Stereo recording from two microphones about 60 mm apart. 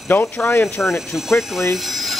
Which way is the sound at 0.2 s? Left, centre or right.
Left.